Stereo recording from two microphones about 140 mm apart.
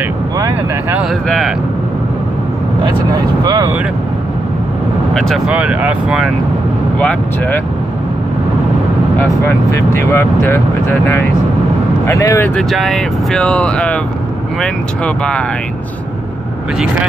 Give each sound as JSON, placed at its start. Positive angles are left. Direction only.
{"t": 0.4, "sound": "speech", "side_deg": -20}
{"t": 2.8, "sound": "speech", "side_deg": -30}
{"t": 5.1, "sound": "speech", "side_deg": 5}
{"t": 5.5, "sound": "speech", "side_deg": -10}
{"t": 7.0, "sound": "speech", "side_deg": 10}
{"t": 9.7, "sound": "speech", "side_deg": 20}
{"t": 12.7, "sound": "speech", "side_deg": 0}